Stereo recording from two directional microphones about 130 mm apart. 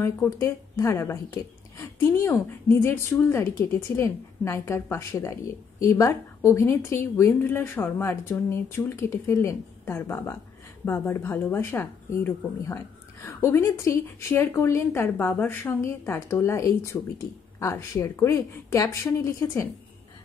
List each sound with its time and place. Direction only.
0.0 s a woman's voice: 20° left (ahead or behind)